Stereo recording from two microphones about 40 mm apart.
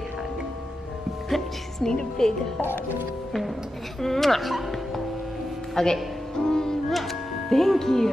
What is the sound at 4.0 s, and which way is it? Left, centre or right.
A woman's voice, centre.